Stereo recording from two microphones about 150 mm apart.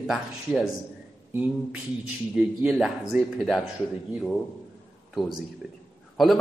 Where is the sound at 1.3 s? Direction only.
10° right (ahead or behind).